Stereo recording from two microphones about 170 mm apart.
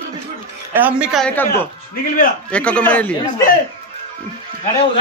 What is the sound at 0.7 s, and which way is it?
Speech, 10° right (ahead or behind).